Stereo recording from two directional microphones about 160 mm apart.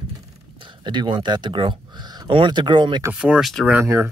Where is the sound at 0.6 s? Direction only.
30° right (ahead or behind).